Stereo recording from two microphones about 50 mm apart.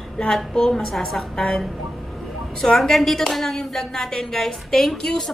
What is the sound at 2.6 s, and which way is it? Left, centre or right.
A woman's voice, centre.